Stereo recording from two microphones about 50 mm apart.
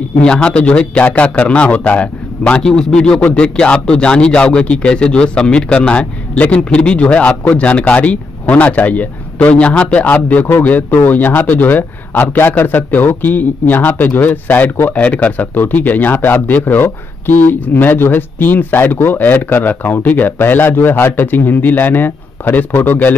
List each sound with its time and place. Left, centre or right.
0.2 s speech: centre
2.6 s a man's voice: centre; by 23.1 s left